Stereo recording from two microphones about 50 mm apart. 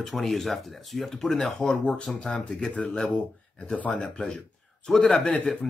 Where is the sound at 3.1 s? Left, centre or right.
Left.